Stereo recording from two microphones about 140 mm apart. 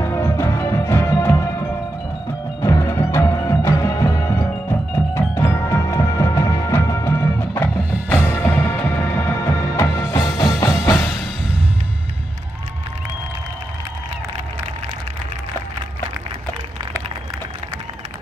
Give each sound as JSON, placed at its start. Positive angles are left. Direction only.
{"t": 0.0, "sound": "music", "side_deg": 20}
{"t": 2.6, "sound": "music", "side_deg": 20}